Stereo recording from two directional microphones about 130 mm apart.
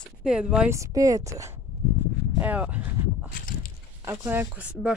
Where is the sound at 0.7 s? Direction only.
25° right (ahead or behind).